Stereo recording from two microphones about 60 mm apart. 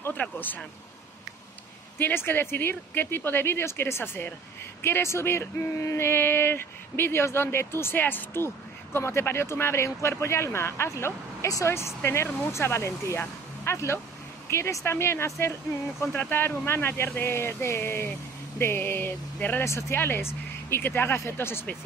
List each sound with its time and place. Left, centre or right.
0.2 s speech: left
2.0 s speech: left
11.4 s speech: left
11.7 s speech: left
16.0 s speech: left
19.6 s speech: left
20.0 s speech: left